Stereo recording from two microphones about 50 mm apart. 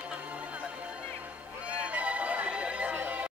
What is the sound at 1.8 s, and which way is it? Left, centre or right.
Music, right.